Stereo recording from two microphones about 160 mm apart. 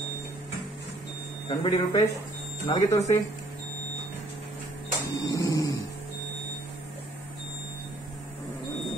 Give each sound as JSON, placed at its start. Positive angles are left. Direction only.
{"t": 1.6, "sound": "speech", "side_deg": 25}
{"t": 5.1, "sound": "vehicle", "side_deg": 20}